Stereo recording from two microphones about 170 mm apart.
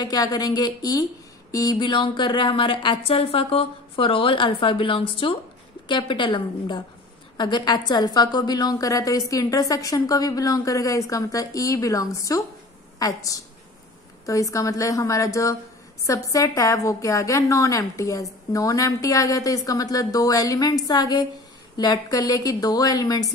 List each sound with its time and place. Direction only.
0.0 s a woman's voice: 20° left (ahead or behind)